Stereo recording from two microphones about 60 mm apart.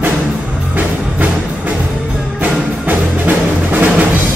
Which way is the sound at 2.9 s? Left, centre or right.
Right.